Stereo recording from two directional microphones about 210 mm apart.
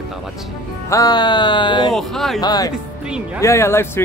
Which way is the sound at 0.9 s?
20° left (ahead or behind).